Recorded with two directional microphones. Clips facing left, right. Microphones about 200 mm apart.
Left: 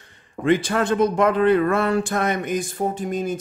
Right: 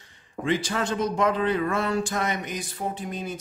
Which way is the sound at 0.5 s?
55° left (ahead or behind).